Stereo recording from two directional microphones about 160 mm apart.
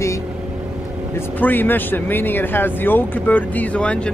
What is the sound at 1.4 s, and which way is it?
Speech, 10° left (ahead or behind).